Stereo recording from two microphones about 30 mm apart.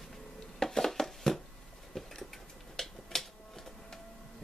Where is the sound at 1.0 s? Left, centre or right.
Centre.